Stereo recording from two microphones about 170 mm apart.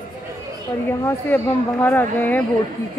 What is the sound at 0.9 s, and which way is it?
Speech, 15° left (ahead or behind).